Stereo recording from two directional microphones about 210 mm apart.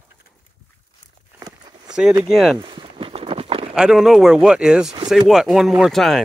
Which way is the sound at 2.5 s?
20° right (ahead or behind).